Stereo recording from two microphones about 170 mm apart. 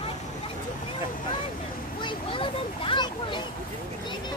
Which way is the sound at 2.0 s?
30° left (ahead or behind).